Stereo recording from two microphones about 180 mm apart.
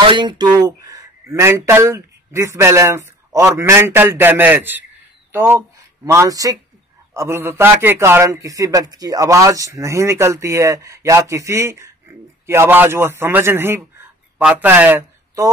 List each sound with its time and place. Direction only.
0.0 s a man's voice: 25° right (ahead or behind)